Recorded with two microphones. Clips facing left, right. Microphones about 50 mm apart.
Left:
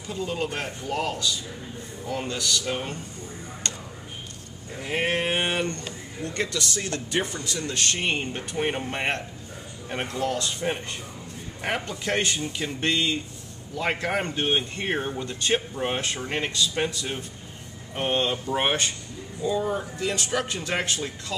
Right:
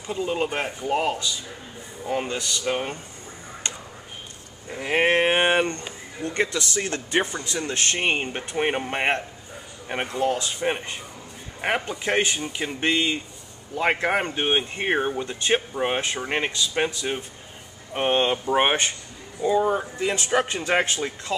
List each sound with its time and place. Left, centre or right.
0.0 s speech: right
3.6 s a sound: centre
4.6 s speech: right